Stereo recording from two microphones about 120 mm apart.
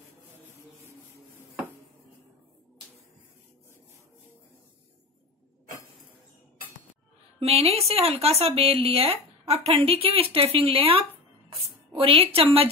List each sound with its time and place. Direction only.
7.3 s speech: 60° right (ahead or behind)